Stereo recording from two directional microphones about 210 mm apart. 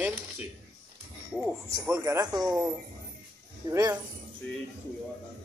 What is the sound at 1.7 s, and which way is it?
Speech, 15° right (ahead or behind).